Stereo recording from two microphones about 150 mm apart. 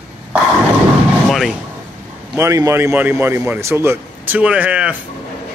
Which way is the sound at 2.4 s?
20° right (ahead or behind).